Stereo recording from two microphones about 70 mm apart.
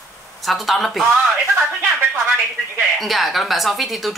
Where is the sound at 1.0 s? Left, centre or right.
Right.